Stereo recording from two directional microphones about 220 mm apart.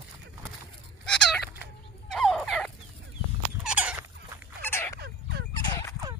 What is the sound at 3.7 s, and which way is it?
Rodents, 5° right (ahead or behind).